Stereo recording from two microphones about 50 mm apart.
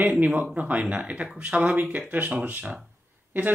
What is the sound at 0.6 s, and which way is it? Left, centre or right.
Speech, right.